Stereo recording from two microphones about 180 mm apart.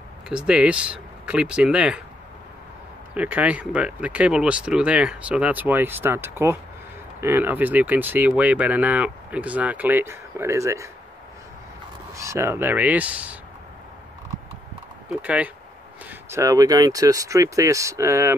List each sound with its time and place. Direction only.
0.3 s speech: 5° right (ahead or behind)
3.2 s speech: 10° right (ahead or behind)
12.2 s speech: 15° right (ahead or behind)
15.2 s speech: 5° right (ahead or behind)